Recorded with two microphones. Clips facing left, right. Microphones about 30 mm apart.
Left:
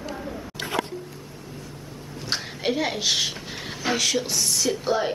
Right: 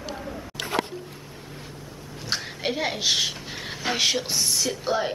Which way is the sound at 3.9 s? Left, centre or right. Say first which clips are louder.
Right 1 dB; right.